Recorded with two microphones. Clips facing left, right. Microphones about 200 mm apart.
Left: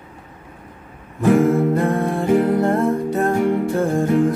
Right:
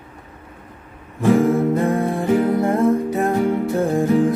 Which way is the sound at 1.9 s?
15° right (ahead or behind).